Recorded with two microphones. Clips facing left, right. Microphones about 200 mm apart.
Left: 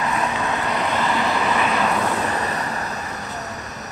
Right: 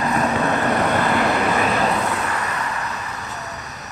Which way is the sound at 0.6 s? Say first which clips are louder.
Right 4 dB; 50° right (ahead or behind).